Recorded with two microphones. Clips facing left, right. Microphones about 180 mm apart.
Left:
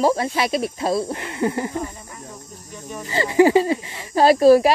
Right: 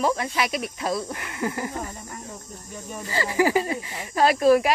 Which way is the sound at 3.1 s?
25° left (ahead or behind).